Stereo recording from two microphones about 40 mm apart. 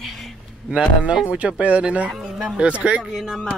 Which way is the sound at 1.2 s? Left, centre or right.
Right.